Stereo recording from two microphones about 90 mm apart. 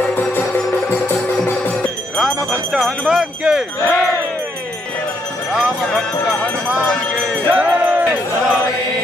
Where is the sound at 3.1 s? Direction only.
5° right (ahead or behind).